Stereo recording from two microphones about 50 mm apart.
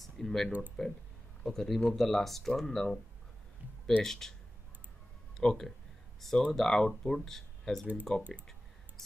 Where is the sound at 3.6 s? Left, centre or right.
Right.